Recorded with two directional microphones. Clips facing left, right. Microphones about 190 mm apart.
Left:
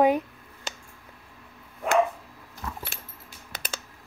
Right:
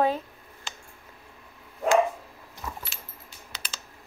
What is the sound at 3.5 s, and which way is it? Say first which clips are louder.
Typing: left 5 dB; 55° left (ahead or behind).